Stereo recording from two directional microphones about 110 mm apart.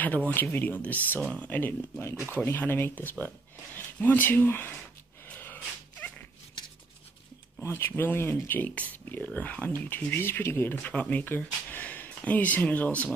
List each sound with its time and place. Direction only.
0.0 s speech: 15° left (ahead or behind)
5.3 s snort: 15° left (ahead or behind)
7.6 s speech: 20° left (ahead or behind)